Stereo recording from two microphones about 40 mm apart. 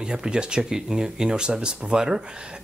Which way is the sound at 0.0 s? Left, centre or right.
Right.